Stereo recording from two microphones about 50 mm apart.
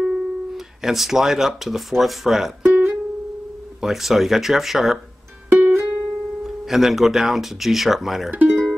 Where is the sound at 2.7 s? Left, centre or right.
Right.